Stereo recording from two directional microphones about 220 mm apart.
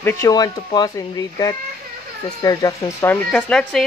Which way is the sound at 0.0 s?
15° left (ahead or behind).